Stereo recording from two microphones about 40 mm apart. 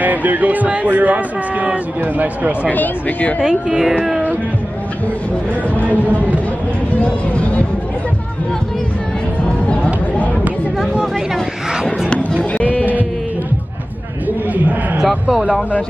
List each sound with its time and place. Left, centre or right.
0.0 s speech: right
2.7 s speech: left
3.3 s speech: centre
7.1 s speech: left